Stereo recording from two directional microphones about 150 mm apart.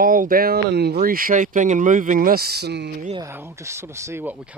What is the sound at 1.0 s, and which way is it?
Speech, 70° right (ahead or behind).